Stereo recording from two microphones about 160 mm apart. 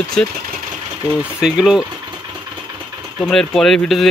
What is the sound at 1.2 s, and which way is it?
Speech, 5° right (ahead or behind).